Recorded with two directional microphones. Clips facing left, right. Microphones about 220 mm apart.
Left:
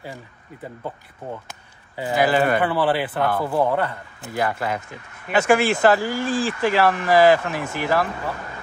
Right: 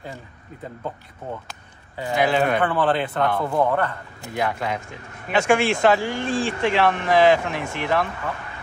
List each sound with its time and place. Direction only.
2.1 s speech: 5° left (ahead or behind)